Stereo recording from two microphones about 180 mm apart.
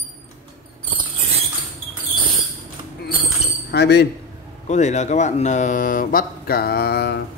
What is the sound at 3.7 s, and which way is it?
Speech, 65° left (ahead or behind).